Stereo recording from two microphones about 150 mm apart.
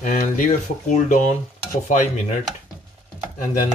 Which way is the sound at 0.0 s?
55° left (ahead or behind).